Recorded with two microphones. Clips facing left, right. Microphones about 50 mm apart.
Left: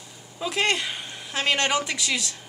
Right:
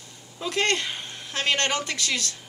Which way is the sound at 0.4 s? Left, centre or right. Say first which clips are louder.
Even; centre.